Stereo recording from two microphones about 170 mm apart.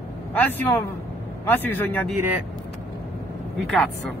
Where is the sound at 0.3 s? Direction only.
10° left (ahead or behind).